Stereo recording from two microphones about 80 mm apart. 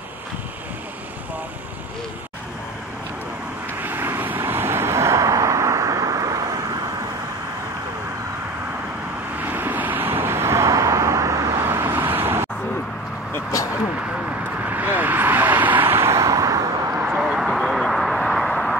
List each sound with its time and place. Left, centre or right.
3.8 s vehicle: right
9.5 s vehicle: right
11.6 s vehicle: right
14.7 s vehicle: right
17.1 s a sound: centre